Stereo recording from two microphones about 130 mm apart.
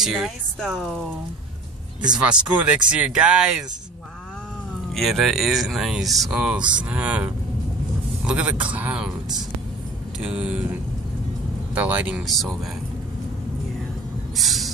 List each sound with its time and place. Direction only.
0.0 s speech: 5° right (ahead or behind)
2.1 s speech: 10° right (ahead or behind)
4.9 s speech: centre (ahead or behind)
8.3 s speech: 10° right (ahead or behind)
14.3 s vehicle: centre (ahead or behind)